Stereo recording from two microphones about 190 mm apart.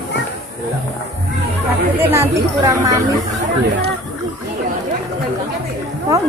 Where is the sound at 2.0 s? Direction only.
15° right (ahead or behind).